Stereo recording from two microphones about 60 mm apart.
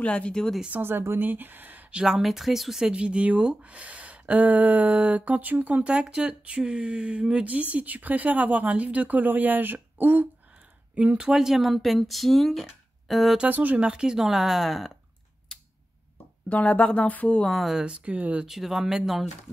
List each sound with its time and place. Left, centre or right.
0.0 s speech: centre
0.7 s a woman's voice: right
1.9 s speech: centre; by 10.2 s right
11.0 s speech: right
11.3 s speech: centre
13.5 s speech: right
13.7 s speech: centre
15.5 s a sound: centre
16.4 s speech: left
17.5 s speech: centre
17.7 s speech: right
18.4 s speech: centre